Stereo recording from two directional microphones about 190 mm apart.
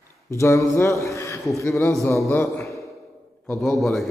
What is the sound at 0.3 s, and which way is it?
A man's voice, 15° left (ahead or behind).